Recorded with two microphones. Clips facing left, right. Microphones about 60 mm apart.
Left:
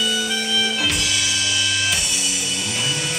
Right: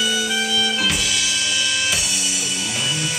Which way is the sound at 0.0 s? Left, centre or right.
Centre.